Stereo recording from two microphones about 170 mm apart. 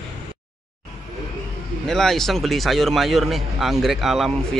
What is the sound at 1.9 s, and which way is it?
Speech, centre (ahead or behind).